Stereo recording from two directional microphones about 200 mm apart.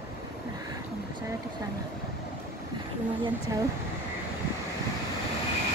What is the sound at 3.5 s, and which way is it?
Speech, 15° right (ahead or behind).